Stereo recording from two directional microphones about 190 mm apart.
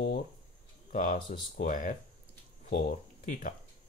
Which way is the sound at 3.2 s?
40° left (ahead or behind).